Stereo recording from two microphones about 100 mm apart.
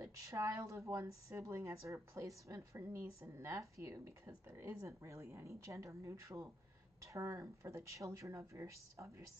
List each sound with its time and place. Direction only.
0.0 s a woman's voice: 30° right (ahead or behind)